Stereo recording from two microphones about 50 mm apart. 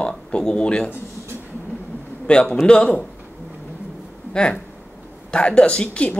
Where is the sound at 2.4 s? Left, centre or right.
Centre.